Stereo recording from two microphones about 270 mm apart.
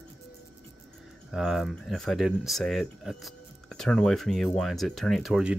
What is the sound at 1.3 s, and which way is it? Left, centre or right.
Speech, centre.